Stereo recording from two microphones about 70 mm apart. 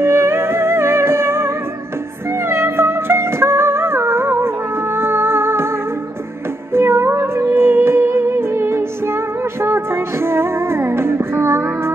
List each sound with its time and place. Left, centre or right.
0.0 s music: right
6.7 s music: right